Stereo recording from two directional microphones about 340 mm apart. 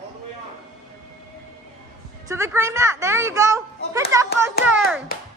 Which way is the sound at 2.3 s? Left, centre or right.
Centre.